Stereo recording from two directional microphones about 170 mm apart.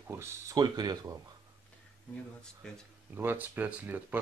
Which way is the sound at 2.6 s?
5° left (ahead or behind).